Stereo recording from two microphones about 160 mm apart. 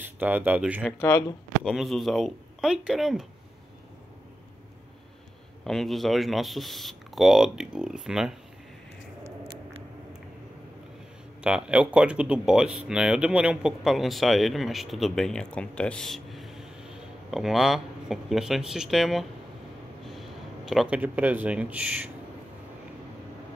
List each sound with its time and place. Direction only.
0.0 s speech: 10° right (ahead or behind)
5.6 s speech: 5° left (ahead or behind)
9.2 s a sound: 35° right (ahead or behind)
11.4 s speech: 5° right (ahead or behind)